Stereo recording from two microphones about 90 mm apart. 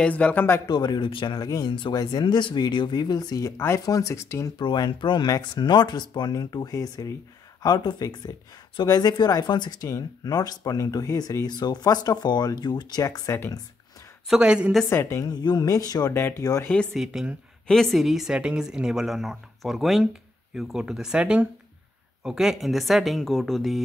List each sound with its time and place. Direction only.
0.0 s speech: 15° left (ahead or behind)
0.7 s speech: 50° left (ahead or behind)
3.5 s speech: 25° left (ahead or behind)
3.8 s speech: 35° left (ahead or behind)
4.6 s speech: 55° left (ahead or behind)
9.3 s speech: 55° left (ahead or behind)
9.8 s speech: 40° left (ahead or behind)
14.2 s a woman's voice: 10° right (ahead or behind)
14.9 s speech: 30° left (ahead or behind)
15.2 s speech: 50° left (ahead or behind)
16.1 s speech: 25° left (ahead or behind)
16.9 s a woman's voice: 5° right (ahead or behind)